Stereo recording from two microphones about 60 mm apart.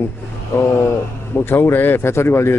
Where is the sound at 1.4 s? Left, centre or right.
Left.